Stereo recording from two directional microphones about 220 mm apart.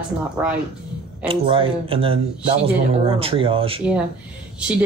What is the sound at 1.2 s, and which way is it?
Speech, 25° right (ahead or behind).